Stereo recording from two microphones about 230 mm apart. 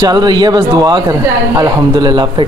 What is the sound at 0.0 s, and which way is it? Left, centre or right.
Speech, centre.